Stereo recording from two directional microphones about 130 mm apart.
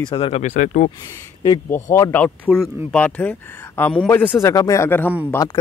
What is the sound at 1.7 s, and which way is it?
Speech, 20° left (ahead or behind).